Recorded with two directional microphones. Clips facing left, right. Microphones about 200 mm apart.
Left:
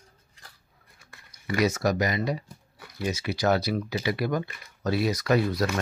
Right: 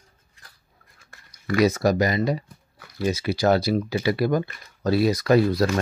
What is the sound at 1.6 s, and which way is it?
Speech, 35° right (ahead or behind).